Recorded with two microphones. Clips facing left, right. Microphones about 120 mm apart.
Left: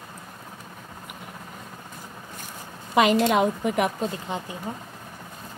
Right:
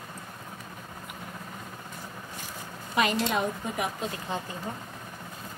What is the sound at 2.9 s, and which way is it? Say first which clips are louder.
A woman's voice: left 7 dB; 90° left.